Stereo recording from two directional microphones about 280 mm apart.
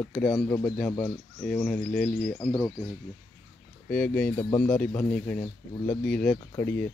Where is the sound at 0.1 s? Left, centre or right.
Centre.